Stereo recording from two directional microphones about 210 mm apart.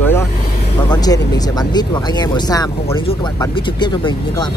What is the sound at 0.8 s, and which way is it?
Speech, 20° left (ahead or behind).